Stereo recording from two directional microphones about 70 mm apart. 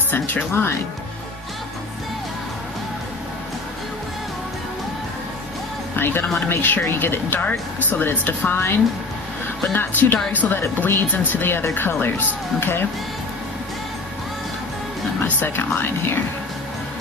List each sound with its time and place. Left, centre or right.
0.1 s speech: left
5.9 s music: left
6.5 s speech: left
9.8 s speech: left
15.2 s speech: left